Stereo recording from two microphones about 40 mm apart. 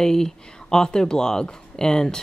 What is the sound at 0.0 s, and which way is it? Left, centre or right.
A woman's voice, centre.